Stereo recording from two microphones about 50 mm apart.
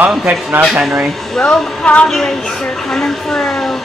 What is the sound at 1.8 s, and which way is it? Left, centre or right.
Speech, left.